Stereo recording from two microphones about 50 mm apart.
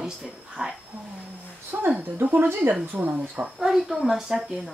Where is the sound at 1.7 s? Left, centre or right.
Right.